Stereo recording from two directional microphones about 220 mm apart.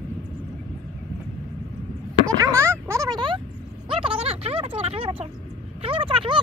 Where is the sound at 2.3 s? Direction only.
10° right (ahead or behind).